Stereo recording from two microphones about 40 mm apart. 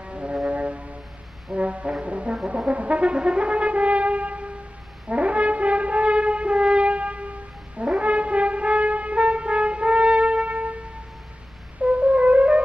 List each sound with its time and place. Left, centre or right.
0.0 s music: right
1.5 s brass instrument: right
11.8 s music: right